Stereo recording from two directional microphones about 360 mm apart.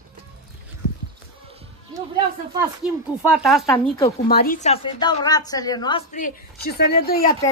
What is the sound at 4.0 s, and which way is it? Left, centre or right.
A woman's voice, centre.